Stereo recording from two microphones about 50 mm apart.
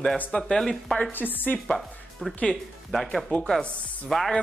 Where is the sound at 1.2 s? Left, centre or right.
Left.